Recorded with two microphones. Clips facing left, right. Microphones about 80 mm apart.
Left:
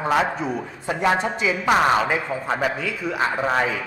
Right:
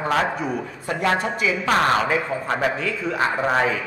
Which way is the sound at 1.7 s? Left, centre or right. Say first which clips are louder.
Left 1 dB; centre.